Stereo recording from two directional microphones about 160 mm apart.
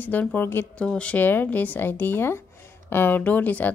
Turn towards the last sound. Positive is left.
turn(degrees=10)  # may be behind; listen again after turning